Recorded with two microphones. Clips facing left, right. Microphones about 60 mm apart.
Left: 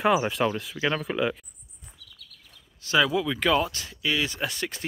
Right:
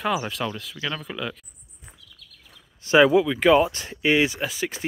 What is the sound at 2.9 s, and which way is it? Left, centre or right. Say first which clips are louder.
Speech: right 7 dB; right.